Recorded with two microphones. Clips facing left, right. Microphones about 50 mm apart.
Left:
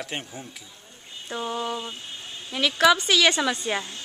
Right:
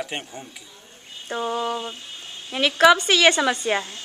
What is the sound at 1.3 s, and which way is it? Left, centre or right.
A woman's voice, centre.